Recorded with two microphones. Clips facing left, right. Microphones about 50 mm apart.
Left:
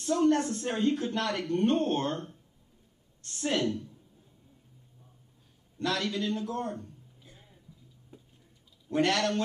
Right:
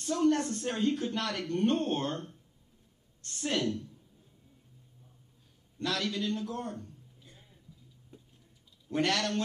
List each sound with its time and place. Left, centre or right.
0.0 s a man's voice: centre
5.8 s a sound: centre
8.1 s tick-tock: centre
8.8 s speech: centre